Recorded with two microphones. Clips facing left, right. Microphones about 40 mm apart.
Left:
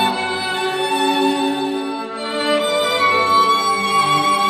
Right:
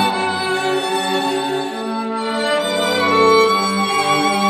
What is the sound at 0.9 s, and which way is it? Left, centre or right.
Music, centre.